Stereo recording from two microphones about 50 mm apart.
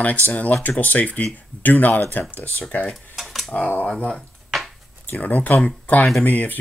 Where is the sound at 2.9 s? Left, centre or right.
Centre.